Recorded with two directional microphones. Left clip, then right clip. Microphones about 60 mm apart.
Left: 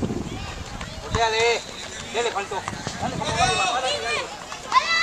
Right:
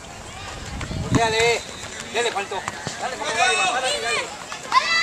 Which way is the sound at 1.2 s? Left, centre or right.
Right.